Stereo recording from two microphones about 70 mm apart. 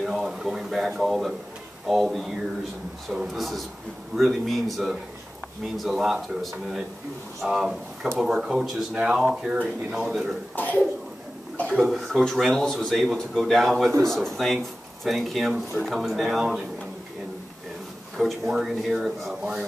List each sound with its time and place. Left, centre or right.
0.0 s speech: centre
9.6 s speech: centre
10.5 s speech: left
11.6 s speech: centre
11.9 s speech: centre
18.1 s speech: centre